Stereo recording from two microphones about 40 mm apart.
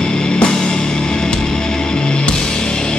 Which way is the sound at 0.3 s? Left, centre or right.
Centre.